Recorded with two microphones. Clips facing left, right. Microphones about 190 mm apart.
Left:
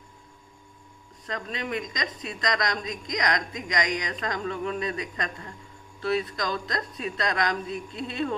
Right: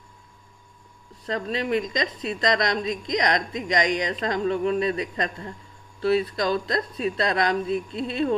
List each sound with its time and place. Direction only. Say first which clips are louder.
1.2 s a woman's voice: right 6 dB; 30° right (ahead or behind)